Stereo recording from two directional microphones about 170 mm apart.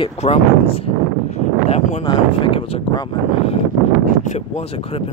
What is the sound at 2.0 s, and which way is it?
Speech, 30° left (ahead or behind).